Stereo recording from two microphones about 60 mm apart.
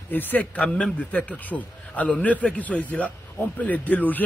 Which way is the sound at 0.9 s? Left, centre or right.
Left.